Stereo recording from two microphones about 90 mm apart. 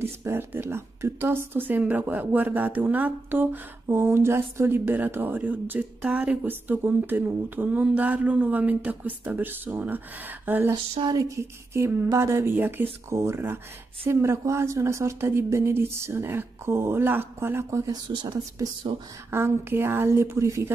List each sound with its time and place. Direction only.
0.0 s speech: 25° right (ahead or behind)
11.1 s speech: 45° right (ahead or behind)
11.3 s speech: 25° right (ahead or behind)
18.0 s speech: 60° right (ahead or behind)
19.3 s speech: 25° right (ahead or behind)